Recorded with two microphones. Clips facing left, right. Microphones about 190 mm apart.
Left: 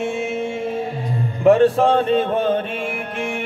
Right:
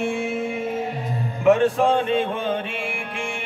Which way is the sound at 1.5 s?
35° left (ahead or behind).